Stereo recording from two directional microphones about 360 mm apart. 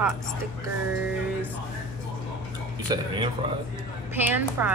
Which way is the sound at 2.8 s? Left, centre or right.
Centre.